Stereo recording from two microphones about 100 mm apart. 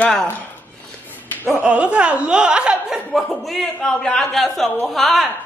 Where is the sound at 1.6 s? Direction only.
10° right (ahead or behind).